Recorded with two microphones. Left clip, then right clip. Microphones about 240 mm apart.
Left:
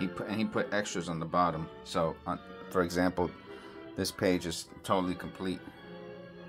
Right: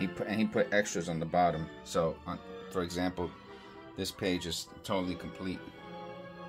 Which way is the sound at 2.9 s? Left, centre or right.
Left.